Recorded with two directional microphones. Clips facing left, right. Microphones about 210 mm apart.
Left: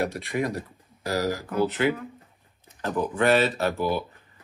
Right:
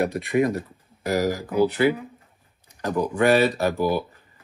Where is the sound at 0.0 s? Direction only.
20° right (ahead or behind).